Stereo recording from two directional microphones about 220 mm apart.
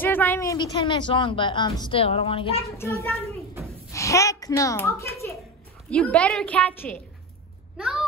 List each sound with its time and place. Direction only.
0.0 s a woman's voice: 10° left (ahead or behind); by 2.6 s 25° left (ahead or behind)
2.8 s a woman's voice: 15° left (ahead or behind)